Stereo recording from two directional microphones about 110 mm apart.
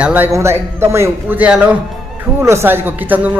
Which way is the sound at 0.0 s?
15° right (ahead or behind).